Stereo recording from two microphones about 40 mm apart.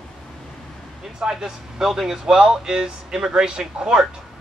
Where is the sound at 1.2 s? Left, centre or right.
Centre.